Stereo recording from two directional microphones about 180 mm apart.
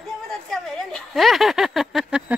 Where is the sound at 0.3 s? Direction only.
Centre (ahead or behind).